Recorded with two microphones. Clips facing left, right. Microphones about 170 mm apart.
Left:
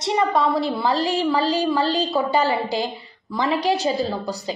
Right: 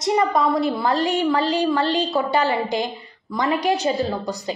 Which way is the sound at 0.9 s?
35° left (ahead or behind).